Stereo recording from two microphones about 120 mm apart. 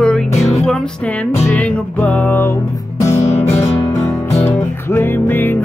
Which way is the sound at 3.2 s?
65° left (ahead or behind).